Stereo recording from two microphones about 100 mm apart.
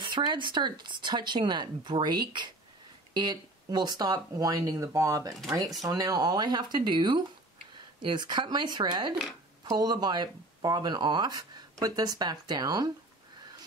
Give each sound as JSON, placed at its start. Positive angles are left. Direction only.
{"t": 0.0, "sound": "speech", "side_deg": -50}